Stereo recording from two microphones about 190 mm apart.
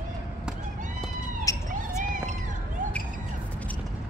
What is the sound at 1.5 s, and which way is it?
Police car, 15° left (ahead or behind).